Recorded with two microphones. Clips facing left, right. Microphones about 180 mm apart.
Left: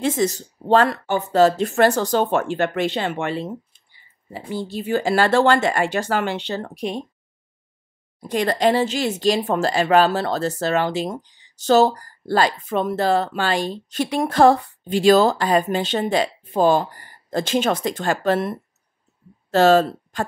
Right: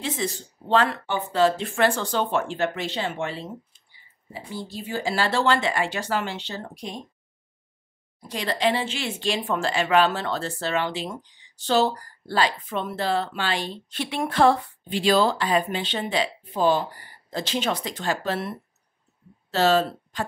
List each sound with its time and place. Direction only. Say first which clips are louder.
0.0 s a woman's voice: left 8 dB; 45° left (ahead or behind); by 7.0 s 70° left (ahead or behind)
8.3 s speech: left 6 dB; 50° left (ahead or behind)